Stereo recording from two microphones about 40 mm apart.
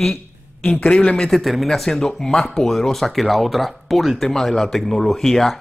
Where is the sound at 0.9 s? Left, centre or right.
Left.